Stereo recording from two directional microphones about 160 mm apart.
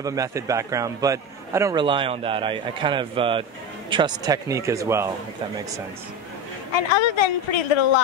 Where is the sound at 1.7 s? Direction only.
30° right (ahead or behind).